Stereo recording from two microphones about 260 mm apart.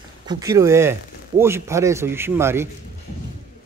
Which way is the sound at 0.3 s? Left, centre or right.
Centre.